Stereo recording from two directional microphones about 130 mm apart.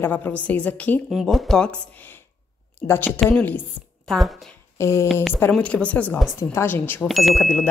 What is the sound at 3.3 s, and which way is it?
Speech, 15° left (ahead or behind).